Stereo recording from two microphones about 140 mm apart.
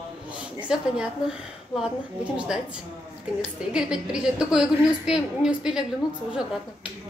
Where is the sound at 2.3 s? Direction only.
5° right (ahead or behind).